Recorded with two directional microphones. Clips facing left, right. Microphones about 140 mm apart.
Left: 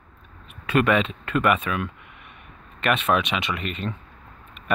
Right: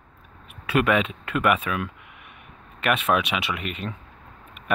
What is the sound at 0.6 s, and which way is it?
Speech, 5° right (ahead or behind).